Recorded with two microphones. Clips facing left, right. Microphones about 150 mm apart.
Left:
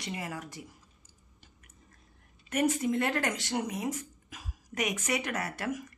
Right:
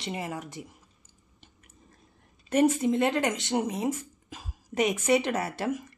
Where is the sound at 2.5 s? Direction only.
25° right (ahead or behind).